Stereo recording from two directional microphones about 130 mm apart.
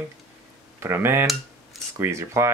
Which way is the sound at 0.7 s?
20° right (ahead or behind).